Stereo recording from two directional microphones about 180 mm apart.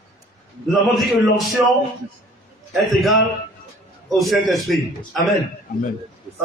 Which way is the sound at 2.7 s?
Centre (ahead or behind).